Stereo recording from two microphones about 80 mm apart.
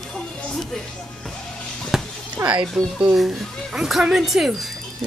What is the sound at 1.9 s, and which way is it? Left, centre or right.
Basketball bounce, centre.